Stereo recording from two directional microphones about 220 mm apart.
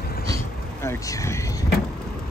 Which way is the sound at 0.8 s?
15° left (ahead or behind).